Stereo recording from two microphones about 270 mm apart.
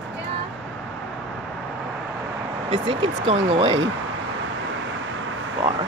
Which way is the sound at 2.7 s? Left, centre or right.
Centre.